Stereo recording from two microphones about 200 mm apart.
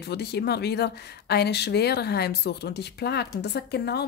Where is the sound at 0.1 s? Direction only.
55° left (ahead or behind).